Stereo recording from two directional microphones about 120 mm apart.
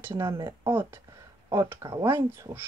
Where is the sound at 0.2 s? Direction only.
25° right (ahead or behind).